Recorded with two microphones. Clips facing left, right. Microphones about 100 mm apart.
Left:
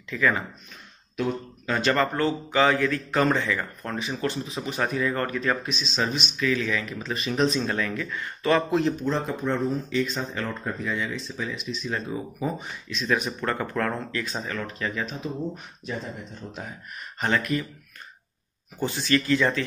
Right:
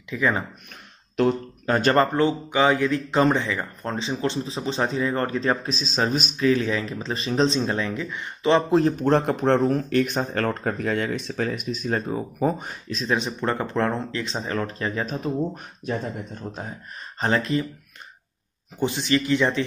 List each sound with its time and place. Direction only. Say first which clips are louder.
0.1 s speech: even; 15° right (ahead or behind)
1.7 s speech: right 4 dB; 40° right (ahead or behind)
2.1 s speech: right 2 dB; 20° right (ahead or behind)
9.0 s speech: right 7 dB; 65° right (ahead or behind); by 13.0 s 45° right (ahead or behind)
13.0 s speech: right 1 dB; 25° right (ahead or behind); by 16.6 s 45° right (ahead or behind)
17.2 s speech: right 3 dB; 30° right (ahead or behind)
18.8 s speech: right 2 dB; 20° right (ahead or behind)